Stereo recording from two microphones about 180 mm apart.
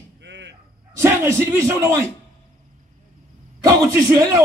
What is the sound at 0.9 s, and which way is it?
A man's voice, 15° right (ahead or behind).